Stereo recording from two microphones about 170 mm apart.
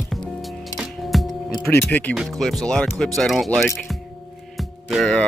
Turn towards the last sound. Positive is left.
turn(degrees=5)  # may be behind; listen again after turning